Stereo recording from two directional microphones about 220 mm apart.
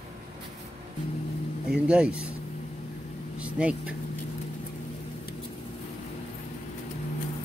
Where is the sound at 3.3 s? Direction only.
5° right (ahead or behind).